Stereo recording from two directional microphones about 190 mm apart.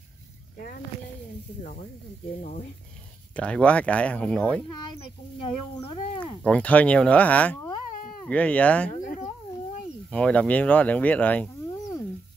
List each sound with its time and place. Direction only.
1.6 s speech: 35° left (ahead or behind)
3.3 s speech: 5° left (ahead or behind)
5.4 s speech: 25° left (ahead or behind)
6.4 s speech: 5° left (ahead or behind)
10.0 s speech: 5° left (ahead or behind)